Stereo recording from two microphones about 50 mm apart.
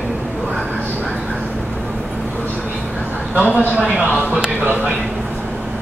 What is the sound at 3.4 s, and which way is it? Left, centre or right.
A man's voice, right.